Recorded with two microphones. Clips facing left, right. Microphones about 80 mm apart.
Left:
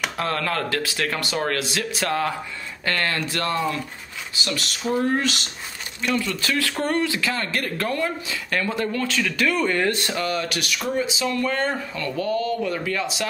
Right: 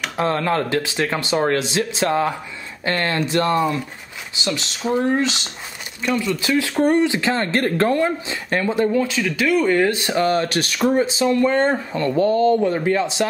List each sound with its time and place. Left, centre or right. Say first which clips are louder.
0.2 s speech: right 7 dB; right
6.0 s speech: right 3 dB; centre
8.9 s speech: right 4 dB; centre
10.0 s speech: right 7 dB; right